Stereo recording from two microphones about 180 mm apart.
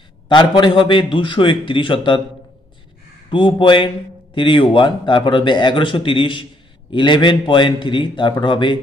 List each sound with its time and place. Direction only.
0.3 s a man's voice: 25° left (ahead or behind)
3.3 s a man's voice: 25° left (ahead or behind)